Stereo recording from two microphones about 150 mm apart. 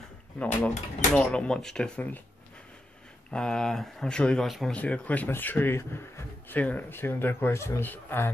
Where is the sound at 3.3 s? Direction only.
5° left (ahead or behind).